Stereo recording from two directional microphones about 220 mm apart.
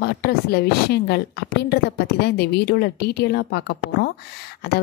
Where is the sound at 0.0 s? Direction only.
45° left (ahead or behind).